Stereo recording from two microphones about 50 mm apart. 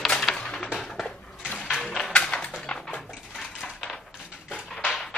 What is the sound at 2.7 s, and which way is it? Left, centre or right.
Dishes, left.